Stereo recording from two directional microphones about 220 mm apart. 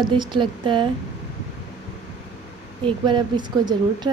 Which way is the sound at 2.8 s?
20° right (ahead or behind).